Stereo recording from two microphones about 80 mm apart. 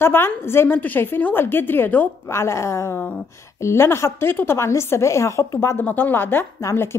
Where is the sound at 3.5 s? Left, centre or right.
Left.